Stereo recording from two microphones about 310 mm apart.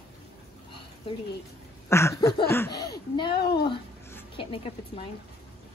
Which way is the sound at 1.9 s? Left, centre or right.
Centre.